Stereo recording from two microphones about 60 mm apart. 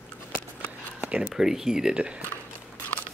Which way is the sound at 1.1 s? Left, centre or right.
Centre.